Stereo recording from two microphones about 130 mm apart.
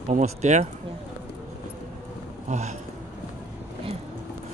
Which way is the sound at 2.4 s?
65° right (ahead or behind).